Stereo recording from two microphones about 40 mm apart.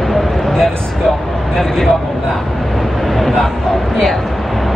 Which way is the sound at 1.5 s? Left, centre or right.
Centre.